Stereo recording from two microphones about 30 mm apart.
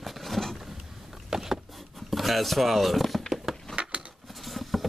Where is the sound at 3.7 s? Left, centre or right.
Right.